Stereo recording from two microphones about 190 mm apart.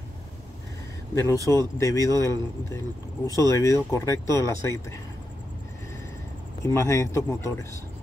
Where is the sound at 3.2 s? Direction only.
15° left (ahead or behind).